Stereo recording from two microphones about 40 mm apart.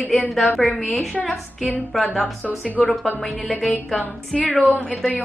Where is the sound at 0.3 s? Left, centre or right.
Centre.